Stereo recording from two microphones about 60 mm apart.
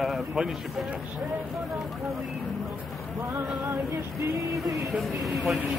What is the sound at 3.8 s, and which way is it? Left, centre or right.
Female singing, right.